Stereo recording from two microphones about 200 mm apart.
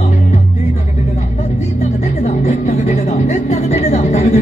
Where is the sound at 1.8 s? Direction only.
35° left (ahead or behind).